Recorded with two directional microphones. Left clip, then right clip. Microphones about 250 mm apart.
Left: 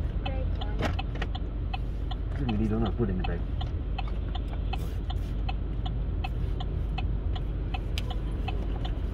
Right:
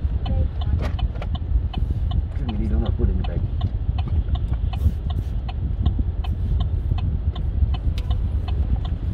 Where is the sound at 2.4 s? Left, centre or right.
Right.